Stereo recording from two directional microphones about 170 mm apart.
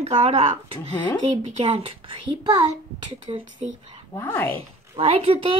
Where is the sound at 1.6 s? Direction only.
35° right (ahead or behind).